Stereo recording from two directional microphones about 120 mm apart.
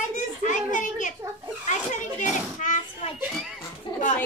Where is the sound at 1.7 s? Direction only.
90° left.